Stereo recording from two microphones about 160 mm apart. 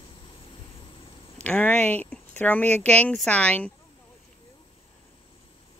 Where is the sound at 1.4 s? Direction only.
10° left (ahead or behind).